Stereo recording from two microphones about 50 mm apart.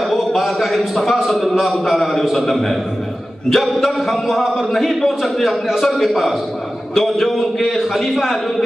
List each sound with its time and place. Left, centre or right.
0.1 s a man's voice: centre